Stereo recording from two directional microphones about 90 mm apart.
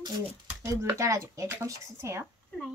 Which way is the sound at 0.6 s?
30° right (ahead or behind).